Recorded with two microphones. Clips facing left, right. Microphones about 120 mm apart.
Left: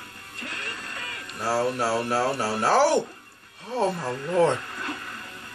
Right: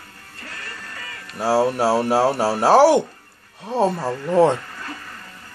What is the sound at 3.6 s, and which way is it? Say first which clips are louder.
Speech: right 5 dB; 40° right (ahead or behind).